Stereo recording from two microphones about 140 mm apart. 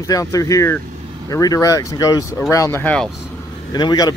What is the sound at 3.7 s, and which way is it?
Speech, 30° left (ahead or behind).